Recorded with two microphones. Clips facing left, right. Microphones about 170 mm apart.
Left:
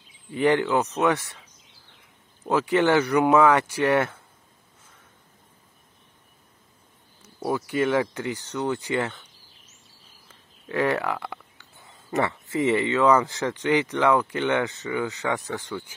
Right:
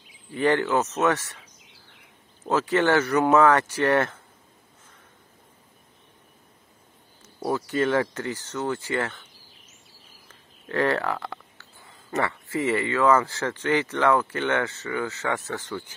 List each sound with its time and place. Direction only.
0.3 s speech: 15° left (ahead or behind)
7.4 s speech: 10° left (ahead or behind)
10.2 s speech: 10° left (ahead or behind)